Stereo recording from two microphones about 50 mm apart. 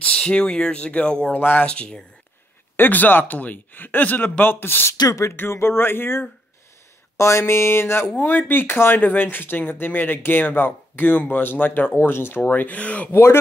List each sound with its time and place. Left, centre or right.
0.3 s speech: centre
1.3 s speech: left; by 2.0 s centre
2.8 s speech: left
7.2 s a sound: left
8.2 s speech: left
12.0 s speech: left
12.4 s speech: left
13.1 s speech: left